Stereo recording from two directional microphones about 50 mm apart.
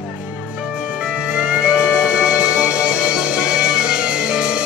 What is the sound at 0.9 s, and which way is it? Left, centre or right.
Music, right.